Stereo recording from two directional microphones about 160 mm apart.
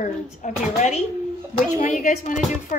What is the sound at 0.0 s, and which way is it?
A woman's voice, 55° left (ahead or behind).